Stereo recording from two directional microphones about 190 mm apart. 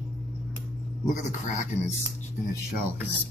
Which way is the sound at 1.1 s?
40° left (ahead or behind).